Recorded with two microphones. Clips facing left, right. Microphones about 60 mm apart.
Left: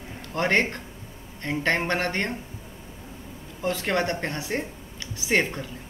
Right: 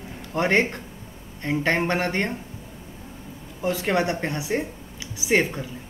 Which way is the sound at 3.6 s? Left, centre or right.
Centre.